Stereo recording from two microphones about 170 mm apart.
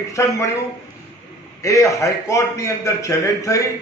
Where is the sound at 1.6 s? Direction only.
20° left (ahead or behind).